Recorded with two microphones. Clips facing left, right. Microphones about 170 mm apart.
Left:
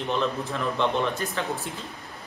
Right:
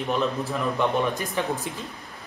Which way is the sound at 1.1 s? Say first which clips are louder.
Right 2 dB; 15° right (ahead or behind).